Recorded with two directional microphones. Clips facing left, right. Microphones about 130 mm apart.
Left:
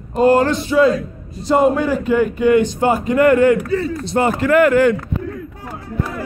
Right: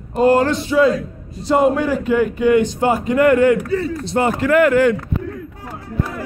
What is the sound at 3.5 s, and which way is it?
Speech, 90° left.